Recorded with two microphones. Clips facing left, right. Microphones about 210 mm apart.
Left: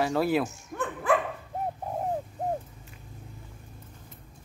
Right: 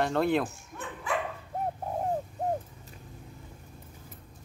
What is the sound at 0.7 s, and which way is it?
Dog, 55° left (ahead or behind).